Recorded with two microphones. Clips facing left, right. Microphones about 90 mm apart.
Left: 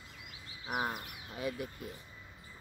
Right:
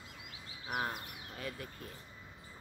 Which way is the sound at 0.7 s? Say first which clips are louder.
Left 2 dB; 15° left (ahead or behind).